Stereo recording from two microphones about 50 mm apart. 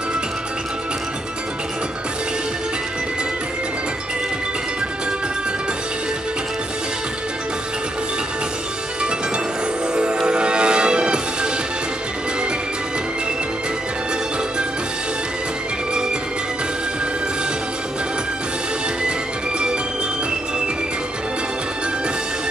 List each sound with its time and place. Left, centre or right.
9.9 s music: centre